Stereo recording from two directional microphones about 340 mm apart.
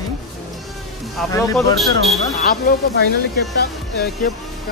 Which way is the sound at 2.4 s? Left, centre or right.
Left.